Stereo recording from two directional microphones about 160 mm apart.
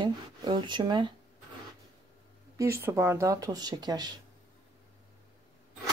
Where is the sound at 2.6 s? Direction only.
15° right (ahead or behind).